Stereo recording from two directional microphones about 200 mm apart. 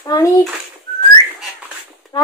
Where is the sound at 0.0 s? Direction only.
15° left (ahead or behind).